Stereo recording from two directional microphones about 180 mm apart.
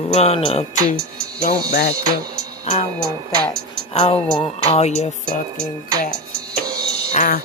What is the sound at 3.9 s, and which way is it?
Music, 30° left (ahead or behind).